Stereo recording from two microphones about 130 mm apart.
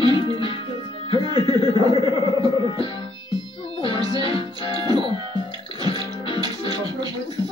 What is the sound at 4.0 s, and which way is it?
Music, 30° right (ahead or behind).